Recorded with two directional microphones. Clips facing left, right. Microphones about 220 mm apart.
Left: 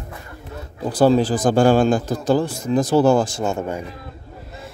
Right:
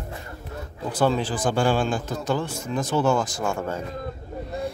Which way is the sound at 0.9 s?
35° left (ahead or behind).